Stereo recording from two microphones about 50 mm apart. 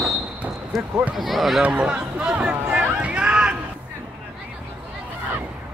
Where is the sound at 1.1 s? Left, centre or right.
Centre.